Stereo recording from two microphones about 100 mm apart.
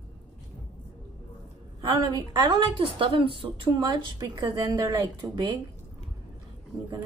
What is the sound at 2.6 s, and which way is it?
A woman's voice, 65° right (ahead or behind).